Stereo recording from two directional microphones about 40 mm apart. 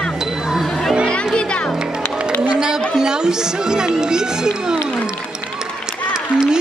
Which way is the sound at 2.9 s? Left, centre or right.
Centre.